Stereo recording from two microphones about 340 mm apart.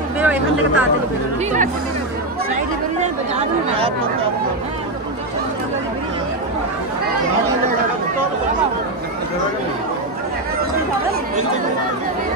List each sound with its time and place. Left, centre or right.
0.2 s speech: centre
2.5 s speech: right